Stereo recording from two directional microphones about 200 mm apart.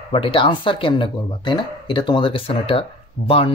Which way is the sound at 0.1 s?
25° left (ahead or behind).